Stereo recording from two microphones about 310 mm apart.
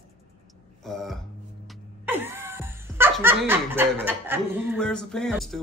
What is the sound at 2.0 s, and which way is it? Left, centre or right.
Speech, centre.